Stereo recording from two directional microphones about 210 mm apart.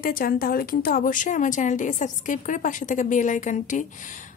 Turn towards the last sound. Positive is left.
turn(degrees=35)  # may be behind; listen again after turning